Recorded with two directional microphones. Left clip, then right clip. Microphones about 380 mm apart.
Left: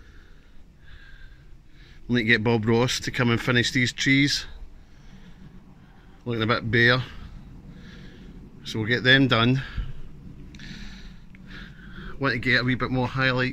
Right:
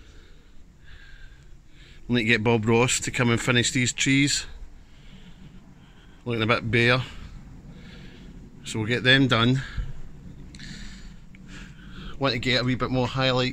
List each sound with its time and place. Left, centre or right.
2.0 s speech: centre
6.2 s speech: centre
7.8 s snort: centre
8.6 s speech: centre
10.5 s a sound: centre
11.5 s speech: centre